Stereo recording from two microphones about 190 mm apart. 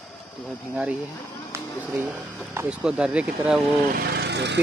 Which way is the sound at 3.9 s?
55° right (ahead or behind).